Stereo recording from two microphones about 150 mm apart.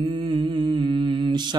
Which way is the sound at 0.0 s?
35° right (ahead or behind).